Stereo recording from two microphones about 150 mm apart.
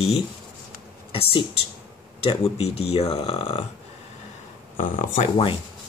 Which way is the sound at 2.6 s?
40° left (ahead or behind).